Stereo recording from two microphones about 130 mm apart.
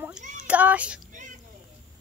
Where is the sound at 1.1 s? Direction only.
75° right (ahead or behind).